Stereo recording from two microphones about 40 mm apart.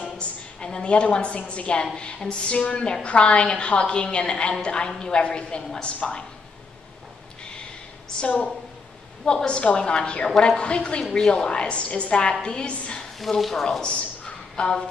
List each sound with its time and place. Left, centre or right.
0.0 s a sound: left
0.7 s a woman's voice: left
9.3 s a woman's voice: centre
10.6 s a woman's voice: left
12.1 s a woman's voice: centre
13.4 s speech: centre
13.8 s a sound: left
14.5 s speech: centre